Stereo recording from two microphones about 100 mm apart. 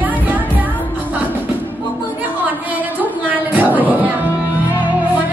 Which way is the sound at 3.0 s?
20° right (ahead or behind).